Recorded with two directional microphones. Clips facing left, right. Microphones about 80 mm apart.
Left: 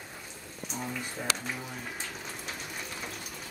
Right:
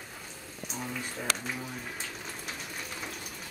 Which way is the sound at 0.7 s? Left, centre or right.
Centre.